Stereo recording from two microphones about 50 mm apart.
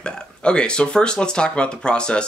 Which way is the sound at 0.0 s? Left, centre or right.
Centre.